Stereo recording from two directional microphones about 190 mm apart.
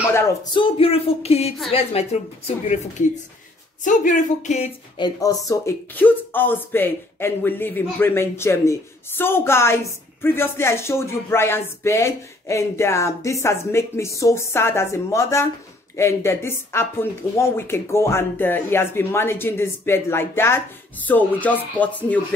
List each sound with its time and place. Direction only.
0.1 s speech: 20° left (ahead or behind); by 4.6 s 40° left (ahead or behind)
4.9 s speech: 20° left (ahead or behind)